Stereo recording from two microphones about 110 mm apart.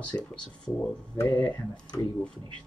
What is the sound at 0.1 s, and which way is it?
Speech, 30° left (ahead or behind).